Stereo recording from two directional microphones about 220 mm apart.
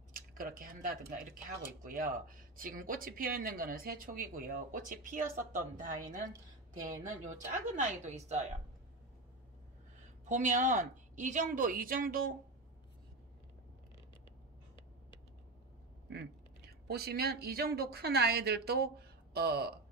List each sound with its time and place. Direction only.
0.1 s speech: 40° right (ahead or behind)
10.2 s speech: 35° right (ahead or behind)
16.8 s speech: 45° right (ahead or behind)